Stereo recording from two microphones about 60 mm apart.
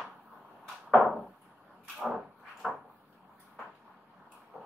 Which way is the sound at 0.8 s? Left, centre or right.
Centre.